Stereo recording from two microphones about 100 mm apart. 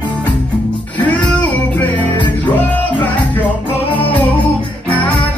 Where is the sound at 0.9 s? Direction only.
15° left (ahead or behind).